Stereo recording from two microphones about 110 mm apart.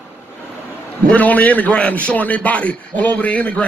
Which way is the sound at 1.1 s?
15° left (ahead or behind).